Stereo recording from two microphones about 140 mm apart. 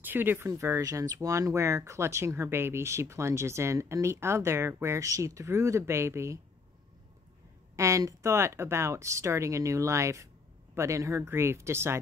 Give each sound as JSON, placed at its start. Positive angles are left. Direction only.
{"t": 0.0, "sound": "speech", "side_deg": -15}
{"t": 7.7, "sound": "speech", "side_deg": -20}